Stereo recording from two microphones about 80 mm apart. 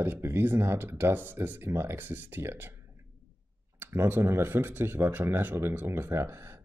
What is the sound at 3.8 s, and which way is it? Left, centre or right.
Speech, right.